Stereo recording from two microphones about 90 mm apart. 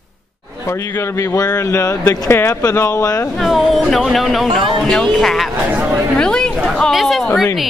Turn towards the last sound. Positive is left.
turn(degrees=0)  # may be behind; listen again after turning